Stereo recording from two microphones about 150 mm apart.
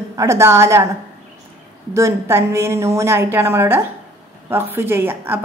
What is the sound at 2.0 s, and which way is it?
A woman's voice, 20° right (ahead or behind).